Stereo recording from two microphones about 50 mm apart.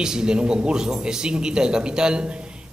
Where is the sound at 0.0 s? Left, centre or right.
Centre.